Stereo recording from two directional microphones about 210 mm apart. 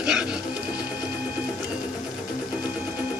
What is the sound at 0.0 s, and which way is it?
Sewing machine, 5° right (ahead or behind).